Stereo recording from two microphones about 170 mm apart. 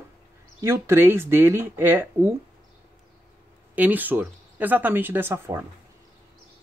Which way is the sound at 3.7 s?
10° right (ahead or behind).